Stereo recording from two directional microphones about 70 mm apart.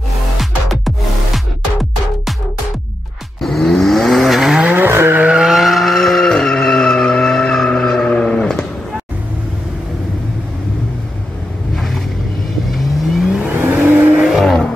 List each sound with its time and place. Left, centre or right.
0.4 s music: centre
3.3 s vehicle: centre
4.6 s vehicle: right
5.4 s vehicle: centre
12.7 s vehicle: centre
13.5 s vehicle: right
14.4 s vehicle: centre